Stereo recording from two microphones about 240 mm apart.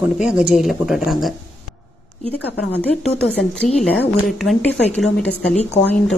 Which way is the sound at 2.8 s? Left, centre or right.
Centre.